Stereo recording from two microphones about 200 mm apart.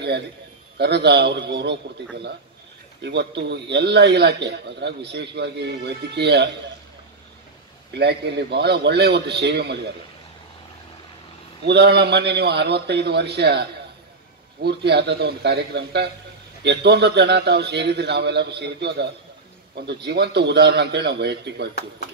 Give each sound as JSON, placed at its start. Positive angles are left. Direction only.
{"t": 0.7, "sound": "a man's voice", "side_deg": -55}
{"t": 3.0, "sound": "a man's voice", "side_deg": -60}
{"t": 7.9, "sound": "a man's voice", "side_deg": -55}
{"t": 11.6, "sound": "a man's voice", "side_deg": -55}